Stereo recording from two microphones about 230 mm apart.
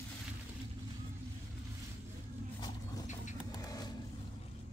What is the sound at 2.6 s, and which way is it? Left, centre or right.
Vehicle, centre.